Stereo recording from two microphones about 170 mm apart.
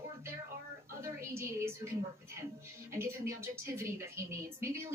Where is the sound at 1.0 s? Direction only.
15° right (ahead or behind).